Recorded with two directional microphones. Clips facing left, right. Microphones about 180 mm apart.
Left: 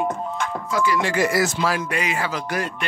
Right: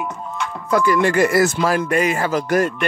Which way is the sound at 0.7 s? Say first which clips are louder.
Right 6 dB; 50° right (ahead or behind).